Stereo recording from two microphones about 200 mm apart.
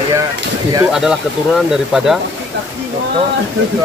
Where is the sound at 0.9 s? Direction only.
Centre (ahead or behind).